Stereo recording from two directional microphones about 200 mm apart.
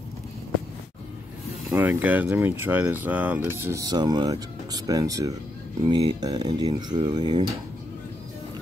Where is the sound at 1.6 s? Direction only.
10° right (ahead or behind).